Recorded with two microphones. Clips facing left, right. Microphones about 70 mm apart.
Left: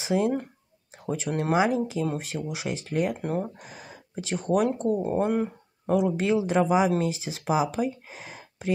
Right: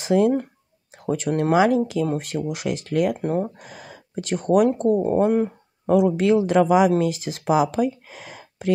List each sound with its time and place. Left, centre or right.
0.0 s speech: right
3.2 s speech: right
3.5 s speech: right
5.2 s a sound: right
5.9 s speech: right